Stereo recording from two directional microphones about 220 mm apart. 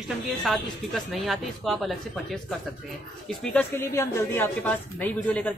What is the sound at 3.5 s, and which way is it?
A woman's voice, 10° left (ahead or behind).